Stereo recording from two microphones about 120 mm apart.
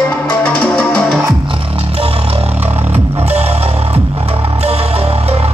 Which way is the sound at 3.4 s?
60° right (ahead or behind).